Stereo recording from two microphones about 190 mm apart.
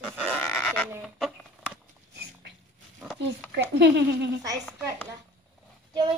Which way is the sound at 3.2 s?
75° right (ahead or behind).